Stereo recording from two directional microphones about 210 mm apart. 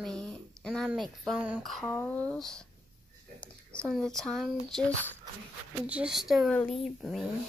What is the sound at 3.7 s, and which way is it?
Speech, 5° left (ahead or behind).